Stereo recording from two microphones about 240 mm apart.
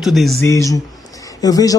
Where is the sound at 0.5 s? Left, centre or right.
Centre.